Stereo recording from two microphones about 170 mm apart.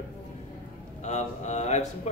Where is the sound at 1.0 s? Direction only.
40° left (ahead or behind).